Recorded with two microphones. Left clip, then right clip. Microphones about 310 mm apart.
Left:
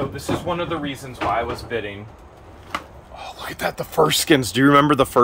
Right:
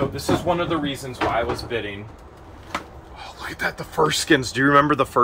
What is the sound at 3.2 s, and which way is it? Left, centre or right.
Speech, left.